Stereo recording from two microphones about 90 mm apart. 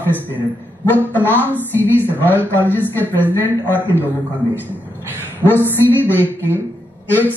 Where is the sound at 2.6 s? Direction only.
20° left (ahead or behind).